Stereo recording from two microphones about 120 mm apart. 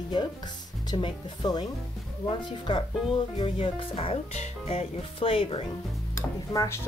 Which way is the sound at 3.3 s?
50° left (ahead or behind).